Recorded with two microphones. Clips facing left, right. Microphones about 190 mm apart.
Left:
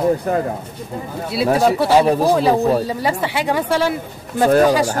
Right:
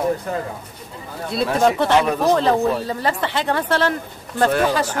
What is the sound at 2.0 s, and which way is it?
Speech, 35° left (ahead or behind).